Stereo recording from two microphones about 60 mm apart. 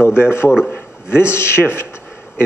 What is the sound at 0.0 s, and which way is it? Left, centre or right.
A man's voice, left.